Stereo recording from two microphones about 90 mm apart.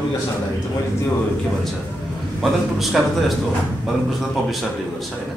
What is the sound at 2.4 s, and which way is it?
Speech, centre (ahead or behind).